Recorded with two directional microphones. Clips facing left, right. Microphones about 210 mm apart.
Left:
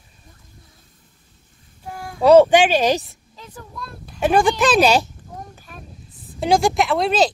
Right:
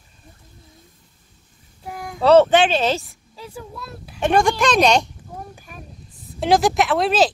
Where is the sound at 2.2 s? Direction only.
10° left (ahead or behind).